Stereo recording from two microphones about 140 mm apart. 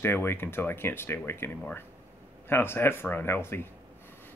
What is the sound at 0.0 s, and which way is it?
Speech, 15° left (ahead or behind).